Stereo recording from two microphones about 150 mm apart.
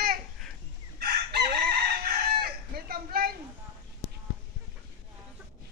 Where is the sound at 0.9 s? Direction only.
90° right.